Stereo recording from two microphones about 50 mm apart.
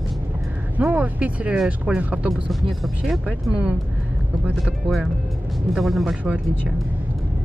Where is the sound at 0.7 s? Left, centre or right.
Right.